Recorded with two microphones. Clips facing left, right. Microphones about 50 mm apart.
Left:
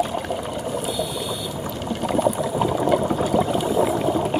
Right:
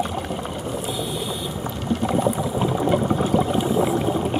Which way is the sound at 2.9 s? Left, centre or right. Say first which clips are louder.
Right 1 dB; centre.